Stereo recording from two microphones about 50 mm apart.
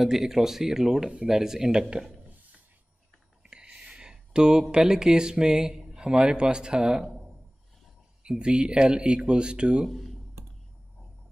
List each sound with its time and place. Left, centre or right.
0.0 s speech: centre
3.4 s speech: centre
8.2 s speech: centre
9.8 s speech: centre